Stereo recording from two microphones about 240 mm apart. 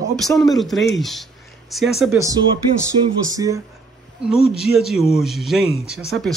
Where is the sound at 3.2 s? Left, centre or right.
Centre.